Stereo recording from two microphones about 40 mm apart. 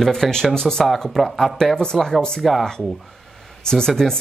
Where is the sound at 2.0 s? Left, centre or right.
Centre.